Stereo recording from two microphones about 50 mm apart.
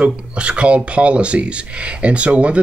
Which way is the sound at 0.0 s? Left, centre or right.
Right.